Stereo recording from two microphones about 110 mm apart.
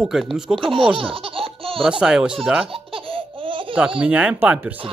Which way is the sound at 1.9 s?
5° right (ahead or behind).